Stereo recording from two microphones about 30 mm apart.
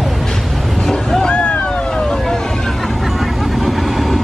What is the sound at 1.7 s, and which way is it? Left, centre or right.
Vehicle, left.